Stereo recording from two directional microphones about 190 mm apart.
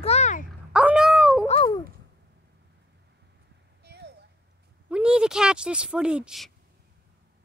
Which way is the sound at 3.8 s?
60° right (ahead or behind).